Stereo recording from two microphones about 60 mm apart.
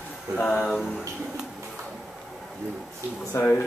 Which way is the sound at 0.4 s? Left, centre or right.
Left.